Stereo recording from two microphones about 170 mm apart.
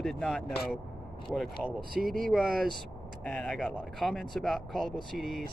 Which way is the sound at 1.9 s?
55° right (ahead or behind).